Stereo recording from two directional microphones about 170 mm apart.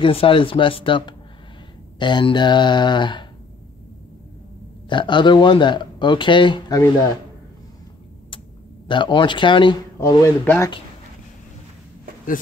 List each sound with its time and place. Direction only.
0.0 s speech: 30° left (ahead or behind)
4.8 s speech: 25° left (ahead or behind)
8.8 s speech: 30° left (ahead or behind)
9.9 s speech: 15° left (ahead or behind)